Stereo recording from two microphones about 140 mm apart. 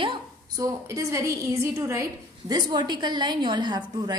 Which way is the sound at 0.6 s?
25° right (ahead or behind).